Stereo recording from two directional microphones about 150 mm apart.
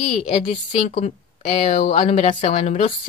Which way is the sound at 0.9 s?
50° left (ahead or behind).